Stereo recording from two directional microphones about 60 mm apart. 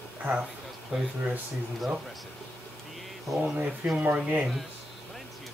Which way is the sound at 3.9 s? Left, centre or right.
Right.